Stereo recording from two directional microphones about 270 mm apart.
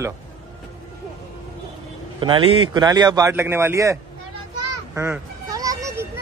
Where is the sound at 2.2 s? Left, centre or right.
Centre.